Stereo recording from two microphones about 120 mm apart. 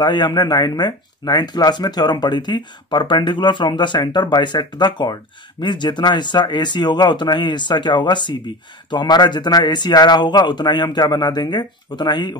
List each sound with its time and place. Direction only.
0.0 s speech: 35° left (ahead or behind)